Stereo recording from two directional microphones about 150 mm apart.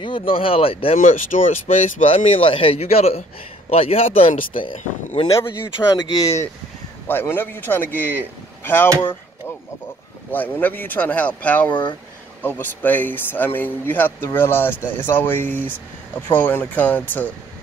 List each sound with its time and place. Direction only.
0.0 s speech: 35° left (ahead or behind)
0.9 s speech: 60° left (ahead or behind)
2.4 s speech: 35° left (ahead or behind)
4.4 s speech: 65° left (ahead or behind)
5.3 s speech: 20° left (ahead or behind)
7.1 s speech: 15° left (ahead or behind)
10.3 s speech: 10° left (ahead or behind)